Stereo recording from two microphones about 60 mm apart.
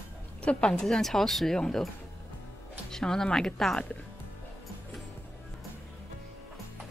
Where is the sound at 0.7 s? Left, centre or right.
Centre.